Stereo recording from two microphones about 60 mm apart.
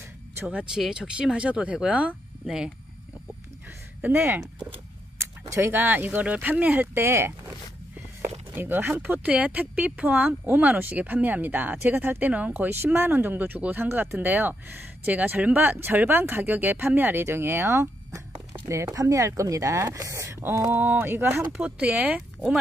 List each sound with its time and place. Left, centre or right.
0.7 s speech: centre
2.4 s speech: centre
4.1 s speech: right
5.6 s speech: right
6.2 s speech: right
6.9 s speech: right
8.5 s speech: right
12.5 s speech: right
18.7 s speech: right
20.2 s a sound: right
20.7 s speech: right
21.5 s speech: right